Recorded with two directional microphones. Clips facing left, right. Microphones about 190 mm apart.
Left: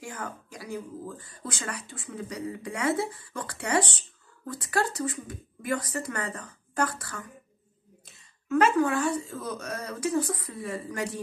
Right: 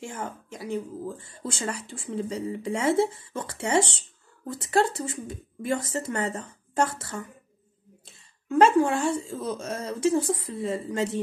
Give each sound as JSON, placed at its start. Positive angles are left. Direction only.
{"t": 0.0, "sound": "speech", "side_deg": -25}
{"t": 8.5, "sound": "speech", "side_deg": -30}